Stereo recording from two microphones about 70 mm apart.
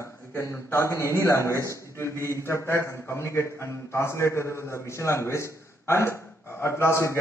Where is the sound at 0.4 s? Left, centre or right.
Left.